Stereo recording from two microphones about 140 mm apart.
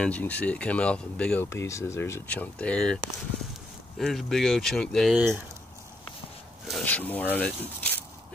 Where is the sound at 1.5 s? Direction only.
20° left (ahead or behind).